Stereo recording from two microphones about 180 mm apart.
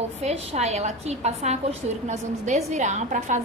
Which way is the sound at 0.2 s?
35° right (ahead or behind).